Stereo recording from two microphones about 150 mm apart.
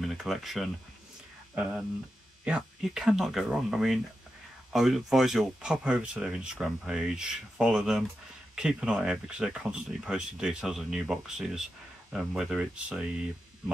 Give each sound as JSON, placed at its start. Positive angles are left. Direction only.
{"t": 0.0, "sound": "speech", "side_deg": 0}